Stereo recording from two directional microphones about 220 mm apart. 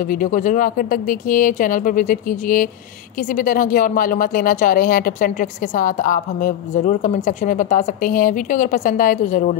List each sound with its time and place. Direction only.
0.0 s speech: 40° left (ahead or behind)